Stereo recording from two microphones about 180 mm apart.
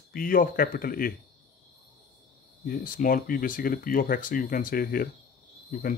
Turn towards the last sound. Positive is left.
turn(degrees=50)  # may be behind; listen again after turning